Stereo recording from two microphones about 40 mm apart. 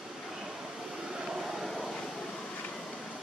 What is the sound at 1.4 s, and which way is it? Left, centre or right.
Vehicle, centre.